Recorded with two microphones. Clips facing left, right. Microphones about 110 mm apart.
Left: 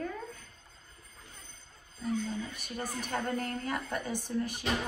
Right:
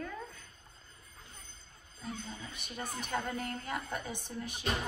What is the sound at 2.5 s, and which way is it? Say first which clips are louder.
Speech: left 4 dB; 45° left (ahead or behind).